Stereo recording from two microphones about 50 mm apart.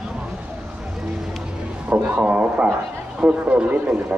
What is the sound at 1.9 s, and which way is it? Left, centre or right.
Speech, right.